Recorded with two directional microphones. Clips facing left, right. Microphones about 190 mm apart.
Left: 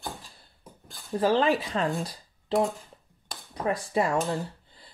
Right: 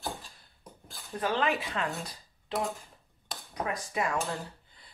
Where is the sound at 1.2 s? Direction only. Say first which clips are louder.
Left 6 dB; 30° left (ahead or behind).